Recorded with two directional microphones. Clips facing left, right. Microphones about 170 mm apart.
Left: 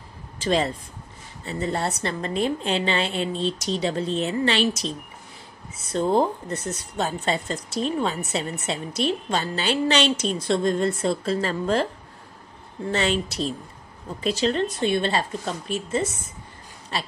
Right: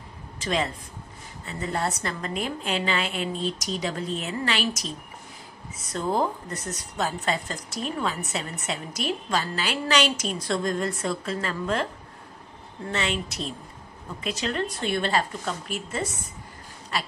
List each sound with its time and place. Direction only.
0.4 s a woman's voice: 35° left (ahead or behind)
12.9 s a woman's voice: 35° left (ahead or behind)